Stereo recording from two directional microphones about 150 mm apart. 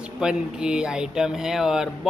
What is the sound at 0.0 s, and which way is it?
A man's voice, 5° right (ahead or behind).